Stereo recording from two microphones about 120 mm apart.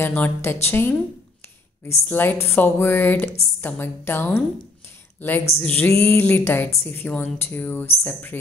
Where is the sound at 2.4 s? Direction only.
20° left (ahead or behind).